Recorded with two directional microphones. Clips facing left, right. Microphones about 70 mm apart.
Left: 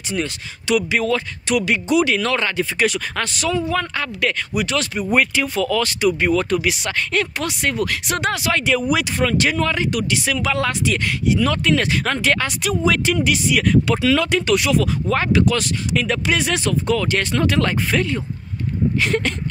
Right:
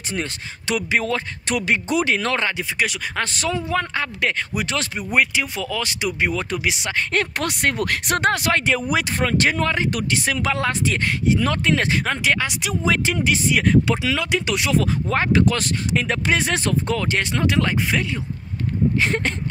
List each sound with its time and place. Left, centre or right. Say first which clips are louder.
0.1 s speech: left 3 dB; right
2.5 s speech: left 5 dB; centre
3.2 s speech: left 1 dB; right
5.1 s speech: left 2 dB; centre
7.1 s speech: even; right
12.0 s speech: left 2 dB; centre
12.8 s speech: left 2 dB; right
14.6 s speech: left 2 dB; right
17.2 s speech: left 2 dB; centre
18.9 s speech: left 1 dB; right